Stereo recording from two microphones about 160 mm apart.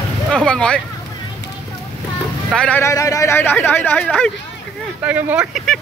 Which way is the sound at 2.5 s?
5° left (ahead or behind).